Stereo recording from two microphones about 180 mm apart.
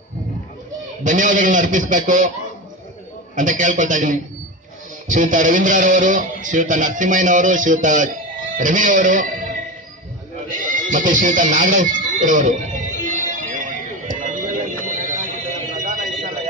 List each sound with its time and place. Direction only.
1.0 s speech: 45° right (ahead or behind)
3.3 s speech: 45° right (ahead or behind)
10.5 s music: 45° right (ahead or behind)
14.9 s vehicle: 45° right (ahead or behind)